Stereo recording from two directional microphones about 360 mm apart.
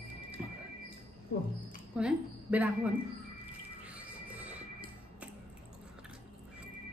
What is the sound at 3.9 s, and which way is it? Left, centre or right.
Music, centre.